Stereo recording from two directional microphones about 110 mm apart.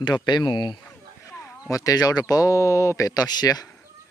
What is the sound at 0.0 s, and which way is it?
A man's voice, 40° left (ahead or behind).